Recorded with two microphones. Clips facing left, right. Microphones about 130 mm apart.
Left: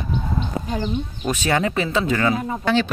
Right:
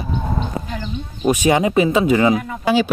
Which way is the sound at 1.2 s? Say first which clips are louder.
Right 7 dB; 15° right (ahead or behind).